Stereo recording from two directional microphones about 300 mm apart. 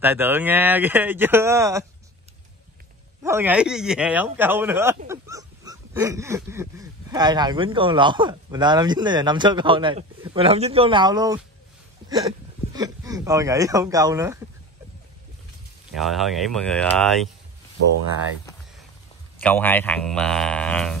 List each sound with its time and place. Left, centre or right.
0.0 s speech: centre
3.3 s speech: centre
12.0 s a sound: centre
12.7 s speech: centre
15.9 s speech: centre
19.4 s speech: centre